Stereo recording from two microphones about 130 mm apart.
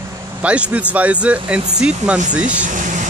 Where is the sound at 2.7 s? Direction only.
75° right (ahead or behind).